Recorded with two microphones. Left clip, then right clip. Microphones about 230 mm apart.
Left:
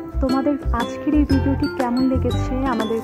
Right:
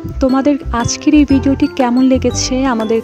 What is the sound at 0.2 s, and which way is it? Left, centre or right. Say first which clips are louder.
Speech: right 8 dB; right.